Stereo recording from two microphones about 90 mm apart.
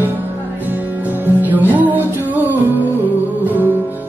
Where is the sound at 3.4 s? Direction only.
20° right (ahead or behind).